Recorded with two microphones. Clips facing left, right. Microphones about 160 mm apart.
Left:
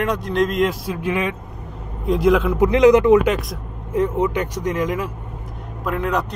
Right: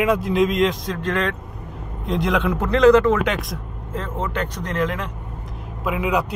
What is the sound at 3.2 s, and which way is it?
Speech, centre (ahead or behind).